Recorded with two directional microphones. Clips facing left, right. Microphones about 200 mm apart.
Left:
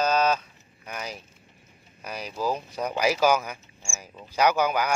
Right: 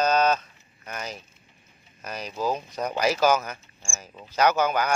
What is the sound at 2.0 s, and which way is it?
Speech, 10° left (ahead or behind).